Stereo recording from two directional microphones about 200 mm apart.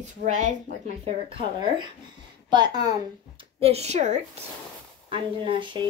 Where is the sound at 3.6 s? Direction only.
30° right (ahead or behind).